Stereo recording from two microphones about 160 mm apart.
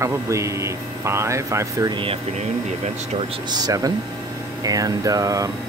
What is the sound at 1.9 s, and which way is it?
Speech, 35° right (ahead or behind).